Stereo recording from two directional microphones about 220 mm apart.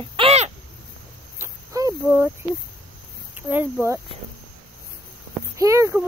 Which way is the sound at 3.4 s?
10° right (ahead or behind).